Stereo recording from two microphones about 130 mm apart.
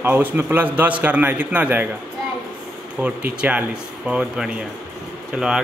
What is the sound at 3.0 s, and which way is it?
A man's voice, 10° right (ahead or behind).